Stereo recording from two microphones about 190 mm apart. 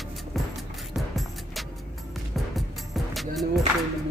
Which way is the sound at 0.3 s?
Centre (ahead or behind).